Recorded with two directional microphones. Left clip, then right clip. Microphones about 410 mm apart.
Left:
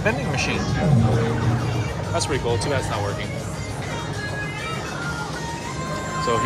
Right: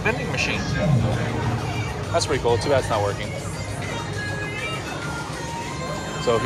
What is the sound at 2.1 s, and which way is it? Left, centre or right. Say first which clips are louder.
Speech: right 3 dB; centre.